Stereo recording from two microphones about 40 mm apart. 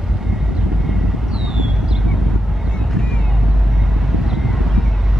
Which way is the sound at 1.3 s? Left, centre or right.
Centre.